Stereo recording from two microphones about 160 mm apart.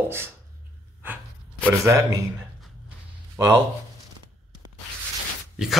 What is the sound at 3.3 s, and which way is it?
Speech, 15° right (ahead or behind).